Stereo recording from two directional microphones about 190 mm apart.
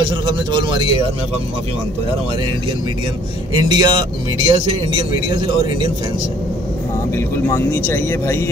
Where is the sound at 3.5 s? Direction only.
25° right (ahead or behind).